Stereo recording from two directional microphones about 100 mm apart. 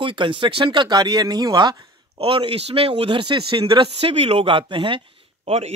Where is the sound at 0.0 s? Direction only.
55° right (ahead or behind).